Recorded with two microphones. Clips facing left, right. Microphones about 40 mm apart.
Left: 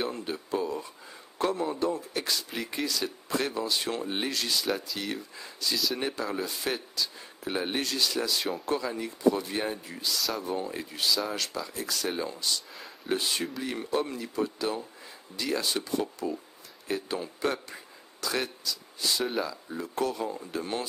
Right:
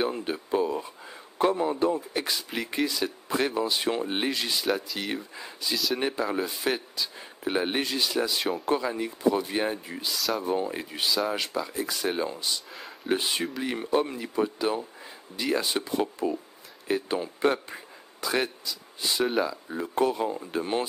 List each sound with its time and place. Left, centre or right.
0.0 s a man's voice: right
4.6 s speech: centre
4.9 s a man's voice: centre
10.1 s speech: centre
10.4 s a man's voice: centre